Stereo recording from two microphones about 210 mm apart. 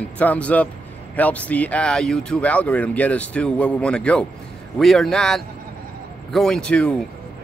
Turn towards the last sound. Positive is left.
turn(degrees=5)  # may be behind; listen again after turning